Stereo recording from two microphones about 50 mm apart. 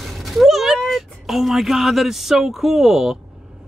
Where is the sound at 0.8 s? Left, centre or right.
Centre.